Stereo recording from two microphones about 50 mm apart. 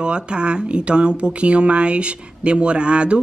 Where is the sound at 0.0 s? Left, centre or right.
Centre.